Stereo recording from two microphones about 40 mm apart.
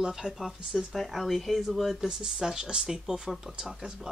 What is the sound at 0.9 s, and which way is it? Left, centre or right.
Speech, centre.